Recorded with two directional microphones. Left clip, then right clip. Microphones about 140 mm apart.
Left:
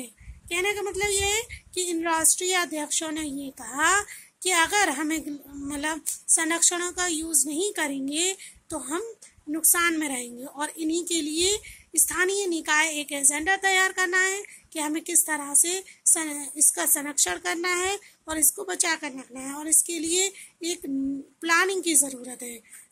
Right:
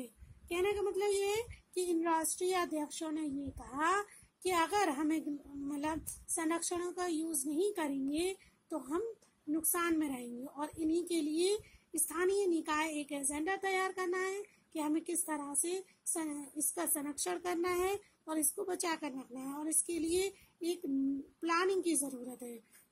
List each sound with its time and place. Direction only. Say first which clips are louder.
0.0 s a woman's voice: left 7 dB; 10° right (ahead or behind)